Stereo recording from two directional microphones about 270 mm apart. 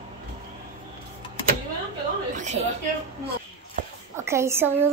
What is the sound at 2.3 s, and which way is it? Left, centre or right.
Speech, right.